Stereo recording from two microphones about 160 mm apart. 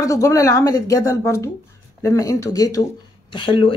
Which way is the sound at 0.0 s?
20° left (ahead or behind).